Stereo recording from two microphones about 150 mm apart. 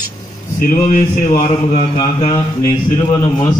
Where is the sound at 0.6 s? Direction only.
60° left (ahead or behind).